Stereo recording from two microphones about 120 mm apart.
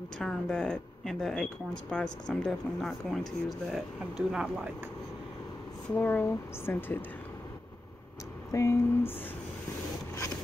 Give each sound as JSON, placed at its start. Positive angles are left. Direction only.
{"t": 0.2, "sound": "speech", "side_deg": 5}
{"t": 5.9, "sound": "speech", "side_deg": 15}
{"t": 8.5, "sound": "a sound", "side_deg": 25}